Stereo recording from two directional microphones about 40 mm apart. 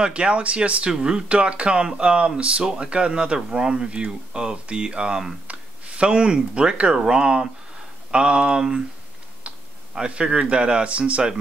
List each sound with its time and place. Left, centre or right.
0.0 s speech: right
9.5 s computer keyboard: right
9.9 s speech: right